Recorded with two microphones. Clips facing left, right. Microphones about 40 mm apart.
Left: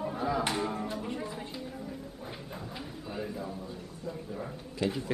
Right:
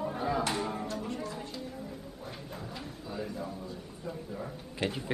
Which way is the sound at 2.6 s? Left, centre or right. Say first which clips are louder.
Left 1 dB; centre.